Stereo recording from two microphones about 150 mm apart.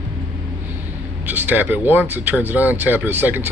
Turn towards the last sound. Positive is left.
turn(degrees=-15)  # may be behind; listen again after turning